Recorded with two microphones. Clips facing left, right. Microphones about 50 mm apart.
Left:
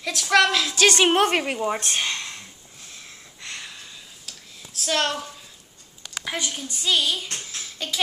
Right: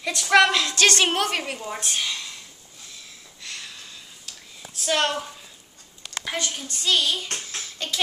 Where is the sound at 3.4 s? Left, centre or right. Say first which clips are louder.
Left 1 dB; left.